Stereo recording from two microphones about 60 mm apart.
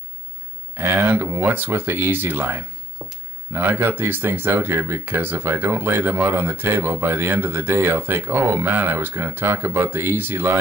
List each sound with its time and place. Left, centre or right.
0.7 s speech: right
1.2 s speech: right
3.0 s a sound: centre
3.5 s speech: right